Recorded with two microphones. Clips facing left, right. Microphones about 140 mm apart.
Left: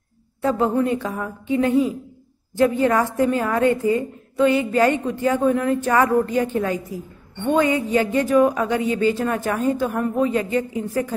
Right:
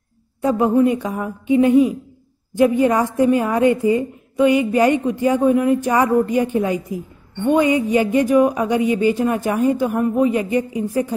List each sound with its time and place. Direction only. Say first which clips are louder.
0.4 s a woman's voice: right 4 dB; 15° right (ahead or behind)